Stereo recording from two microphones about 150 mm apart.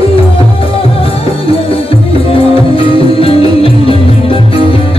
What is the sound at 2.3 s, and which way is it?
Music, 40° left (ahead or behind).